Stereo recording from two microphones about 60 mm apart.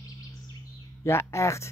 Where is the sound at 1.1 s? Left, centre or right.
Left.